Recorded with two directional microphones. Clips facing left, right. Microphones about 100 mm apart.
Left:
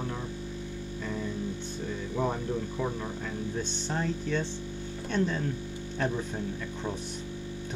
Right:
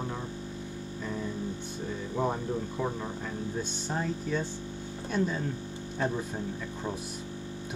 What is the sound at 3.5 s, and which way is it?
Speech, 5° right (ahead or behind).